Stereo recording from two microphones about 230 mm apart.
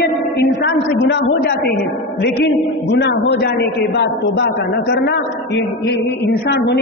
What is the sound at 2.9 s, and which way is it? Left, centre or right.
Speech, left.